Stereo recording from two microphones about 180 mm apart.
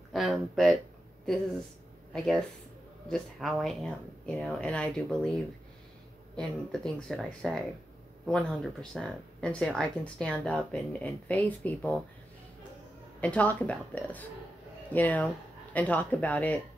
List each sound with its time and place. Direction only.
0.1 s speech: centre (ahead or behind)
2.1 s speech: centre (ahead or behind)
6.3 s speech: 5° left (ahead or behind)
13.2 s speech: 10° left (ahead or behind)